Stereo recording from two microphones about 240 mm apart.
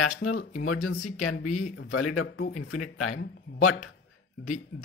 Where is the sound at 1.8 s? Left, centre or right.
Left.